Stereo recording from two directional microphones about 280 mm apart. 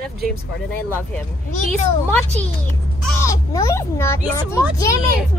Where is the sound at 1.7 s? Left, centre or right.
Centre.